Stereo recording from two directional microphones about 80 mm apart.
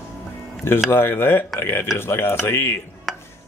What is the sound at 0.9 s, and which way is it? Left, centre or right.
Speech, left.